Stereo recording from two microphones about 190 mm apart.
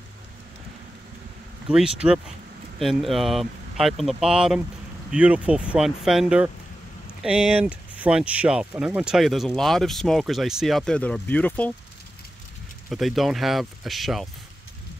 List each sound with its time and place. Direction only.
1.7 s speech: 5° right (ahead or behind)
12.9 s speech: centre (ahead or behind)